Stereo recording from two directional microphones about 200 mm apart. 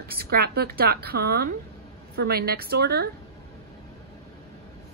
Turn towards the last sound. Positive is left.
turn(degrees=-55)  # may be behind; listen again after turning